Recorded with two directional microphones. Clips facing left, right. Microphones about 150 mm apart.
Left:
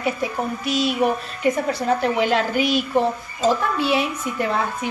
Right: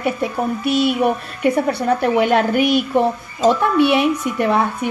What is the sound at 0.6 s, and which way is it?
Speech, 60° right (ahead or behind).